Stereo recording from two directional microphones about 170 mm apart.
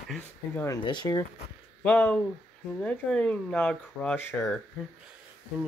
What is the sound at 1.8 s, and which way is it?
Speech, 5° left (ahead or behind).